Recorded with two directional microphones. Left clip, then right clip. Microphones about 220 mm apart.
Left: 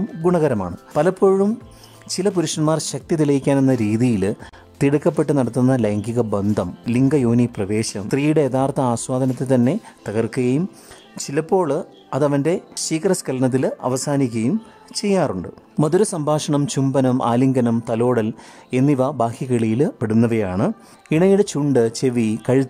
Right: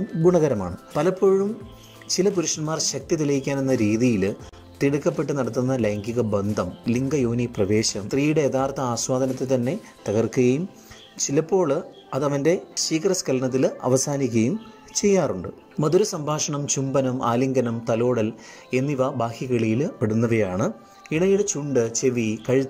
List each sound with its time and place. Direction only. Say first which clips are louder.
0.2 s speech: left 1 dB; 5° left (ahead or behind)